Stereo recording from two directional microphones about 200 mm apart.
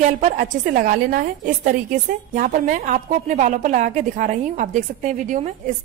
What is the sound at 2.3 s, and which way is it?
A woman's voice, 40° right (ahead or behind).